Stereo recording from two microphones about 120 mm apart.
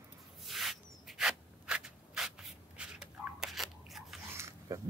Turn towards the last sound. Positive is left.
turn(degrees=-25)  # may be behind; listen again after turning